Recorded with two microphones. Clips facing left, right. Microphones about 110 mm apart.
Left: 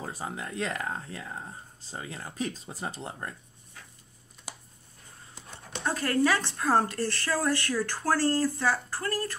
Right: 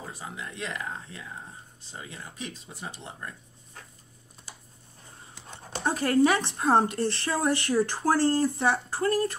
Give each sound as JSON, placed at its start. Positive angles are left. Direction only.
{"t": 0.1, "sound": "speech", "side_deg": 35}
{"t": 0.7, "sound": "speech", "side_deg": 45}
{"t": 1.9, "sound": "speech", "side_deg": 35}
{"t": 5.8, "sound": "speech", "side_deg": -25}